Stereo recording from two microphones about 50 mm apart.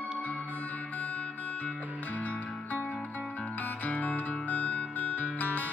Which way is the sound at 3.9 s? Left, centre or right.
Left.